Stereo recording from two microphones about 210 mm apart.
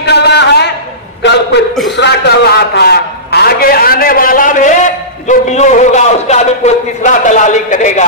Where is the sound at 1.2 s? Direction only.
55° left (ahead or behind).